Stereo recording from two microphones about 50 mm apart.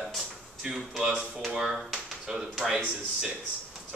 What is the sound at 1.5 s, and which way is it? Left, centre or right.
Speech, centre.